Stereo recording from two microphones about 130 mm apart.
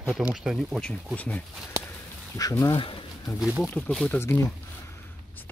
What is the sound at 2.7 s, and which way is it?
Speech, 40° left (ahead or behind).